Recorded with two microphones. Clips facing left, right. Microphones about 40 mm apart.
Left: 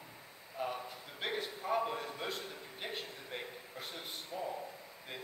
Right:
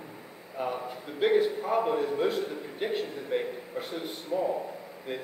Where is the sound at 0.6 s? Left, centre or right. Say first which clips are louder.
Right 7 dB; centre.